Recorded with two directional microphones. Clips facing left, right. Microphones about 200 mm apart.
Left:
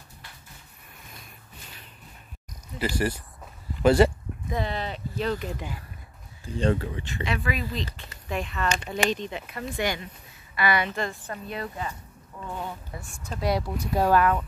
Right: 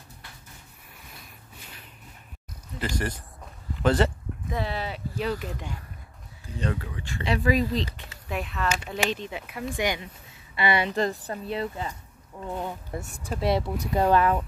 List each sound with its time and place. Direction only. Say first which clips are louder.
2.8 s speech: left 3 dB; 10° left (ahead or behind)
4.5 s speech: left 1 dB; 5° right (ahead or behind)
6.4 s speech: left 6 dB; 30° left (ahead or behind)
7.2 s speech: right 7 dB; 35° right (ahead or behind)
8.1 s speech: left 1 dB; 5° right (ahead or behind)
10.5 s a woman's voice: right 1 dB; 25° right (ahead or behind)
13.0 s speech: right 2 dB; 35° right (ahead or behind)
13.3 s speech: right 2 dB; centre (ahead or behind)
14.1 s a woman's voice: left 1 dB; 25° right (ahead or behind)